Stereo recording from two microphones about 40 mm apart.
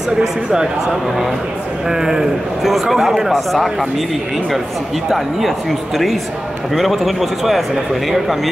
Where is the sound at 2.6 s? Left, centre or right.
Centre.